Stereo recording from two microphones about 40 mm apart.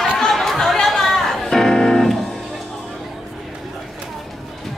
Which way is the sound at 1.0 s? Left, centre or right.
Centre.